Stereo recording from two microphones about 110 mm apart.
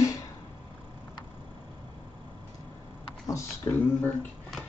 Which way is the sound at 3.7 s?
35° left (ahead or behind).